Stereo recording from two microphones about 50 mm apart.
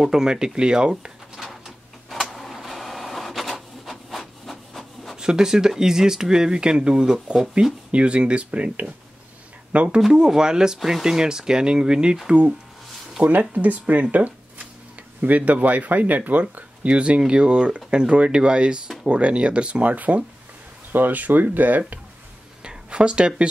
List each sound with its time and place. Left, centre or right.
0.0 s speech: centre
1.3 s a sound: centre
2.3 s printer: centre
4.1 s rub: centre
5.1 s speech: centre
10.1 s speech: centre
13.2 s speech: right
14.1 s a sound: right
15.2 s speech: right
22.6 s a sound: centre